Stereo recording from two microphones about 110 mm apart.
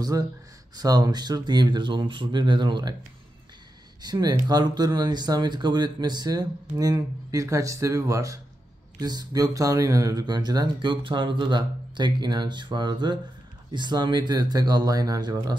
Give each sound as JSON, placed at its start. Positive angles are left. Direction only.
{"t": 0.0, "sound": "speech", "side_deg": -35}
{"t": 4.0, "sound": "speech", "side_deg": -40}